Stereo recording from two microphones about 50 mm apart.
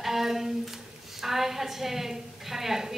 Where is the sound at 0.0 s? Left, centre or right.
Centre.